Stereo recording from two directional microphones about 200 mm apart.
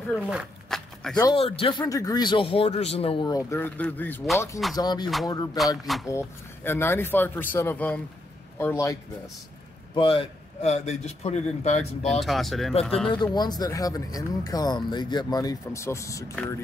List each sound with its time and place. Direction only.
0.1 s a sound: centre (ahead or behind)
1.1 s speech: 25° left (ahead or behind)
9.9 s a man's voice: 25° left (ahead or behind)
12.1 s speech: centre (ahead or behind)
13.1 s speech: 20° left (ahead or behind)